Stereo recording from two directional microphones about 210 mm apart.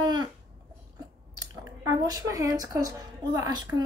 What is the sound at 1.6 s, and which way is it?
A woman's voice, 20° right (ahead or behind).